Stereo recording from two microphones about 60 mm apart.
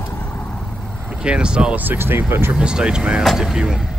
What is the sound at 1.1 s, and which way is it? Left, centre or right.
Speech, centre.